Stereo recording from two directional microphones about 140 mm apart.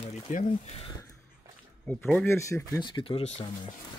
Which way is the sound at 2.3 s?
20° left (ahead or behind).